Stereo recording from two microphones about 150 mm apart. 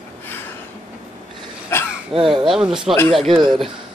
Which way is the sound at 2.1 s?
Centre (ahead or behind).